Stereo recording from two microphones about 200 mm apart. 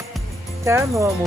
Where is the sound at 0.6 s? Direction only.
15° right (ahead or behind).